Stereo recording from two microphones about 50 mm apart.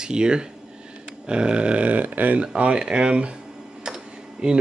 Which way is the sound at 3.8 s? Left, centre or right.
Centre.